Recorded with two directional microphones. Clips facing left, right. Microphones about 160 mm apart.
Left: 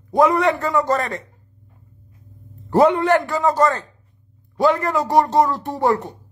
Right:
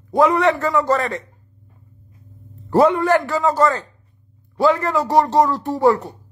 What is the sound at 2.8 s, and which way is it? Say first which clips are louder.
A man's voice: even; 25° left (ahead or behind).